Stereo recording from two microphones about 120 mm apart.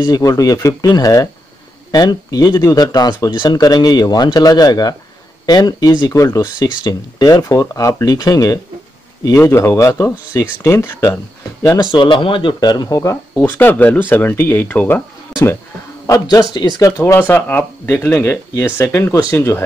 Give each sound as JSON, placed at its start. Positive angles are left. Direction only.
{"t": 0.1, "sound": "speech", "side_deg": 30}
{"t": 11.8, "sound": "speech", "side_deg": 40}
{"t": 16.1, "sound": "speech", "side_deg": 35}
{"t": 17.0, "sound": "speech", "side_deg": 20}